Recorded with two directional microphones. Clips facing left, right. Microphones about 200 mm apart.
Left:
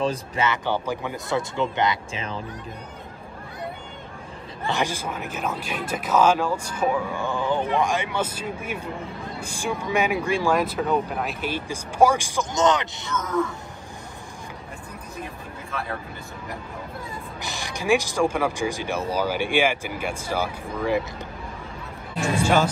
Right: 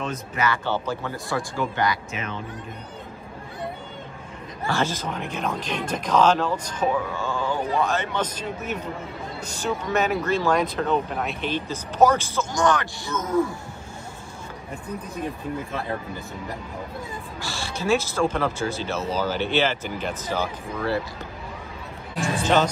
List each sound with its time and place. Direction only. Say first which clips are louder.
0.0 s speech: left 2 dB; 30° left (ahead or behind)
0.7 s speech: left 1 dB; 15° left (ahead or behind); by 2.4 s 30° left (ahead or behind)
4.6 s speech: right 1 dB; 15° left (ahead or behind)
17.4 s speech: right 2 dB; 15° left (ahead or behind)
22.4 s speech: even; 10° left (ahead or behind)